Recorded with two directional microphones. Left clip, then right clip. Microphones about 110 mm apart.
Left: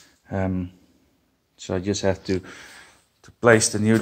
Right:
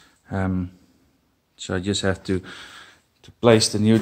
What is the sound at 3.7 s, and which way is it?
Speech, 25° right (ahead or behind).